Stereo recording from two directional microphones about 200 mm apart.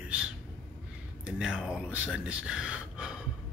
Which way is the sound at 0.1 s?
5° right (ahead or behind).